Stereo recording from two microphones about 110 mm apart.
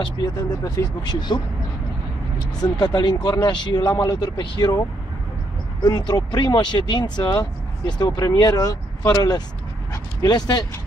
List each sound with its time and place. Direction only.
0.4 s speech: 35° left (ahead or behind)
2.6 s speech: 40° left (ahead or behind)
5.8 s speech: 40° left (ahead or behind)